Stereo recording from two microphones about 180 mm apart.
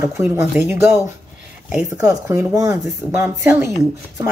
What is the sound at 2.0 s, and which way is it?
A woman's voice, 20° right (ahead or behind).